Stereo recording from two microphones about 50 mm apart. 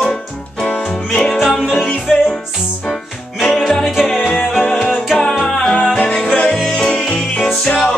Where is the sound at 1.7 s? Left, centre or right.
Centre.